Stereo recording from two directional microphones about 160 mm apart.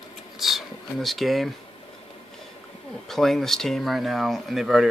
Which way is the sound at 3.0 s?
Centre (ahead or behind).